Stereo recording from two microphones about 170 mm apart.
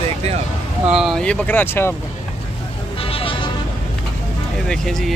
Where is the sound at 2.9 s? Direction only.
35° left (ahead or behind).